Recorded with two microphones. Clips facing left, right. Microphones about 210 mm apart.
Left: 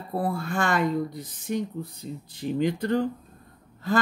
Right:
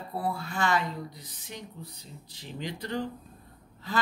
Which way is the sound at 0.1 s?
50° left (ahead or behind).